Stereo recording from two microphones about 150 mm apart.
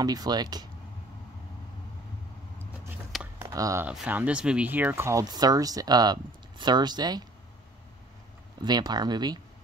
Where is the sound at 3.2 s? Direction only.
15° right (ahead or behind).